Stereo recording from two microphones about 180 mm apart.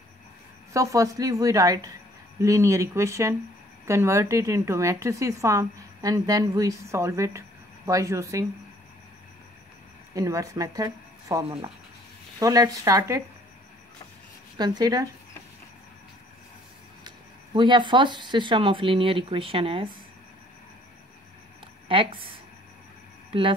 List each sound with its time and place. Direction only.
0.7 s a woman's voice: 20° right (ahead or behind)
10.1 s a woman's voice: 20° right (ahead or behind)
14.6 s speech: 20° right (ahead or behind)
17.6 s speech: 25° right (ahead or behind)
21.8 s speech: 30° right (ahead or behind)